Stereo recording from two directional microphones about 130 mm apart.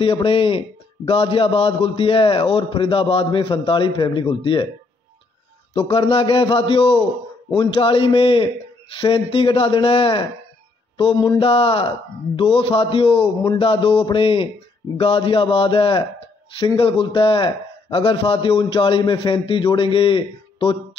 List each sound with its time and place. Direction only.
0.0 s a man's voice: 40° left (ahead or behind)
5.7 s a man's voice: 45° left (ahead or behind)
11.0 s mantra: 40° left (ahead or behind)
11.3 s a man's voice: 45° left (ahead or behind)